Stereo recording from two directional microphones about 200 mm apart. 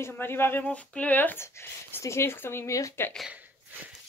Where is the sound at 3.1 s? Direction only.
5° right (ahead or behind).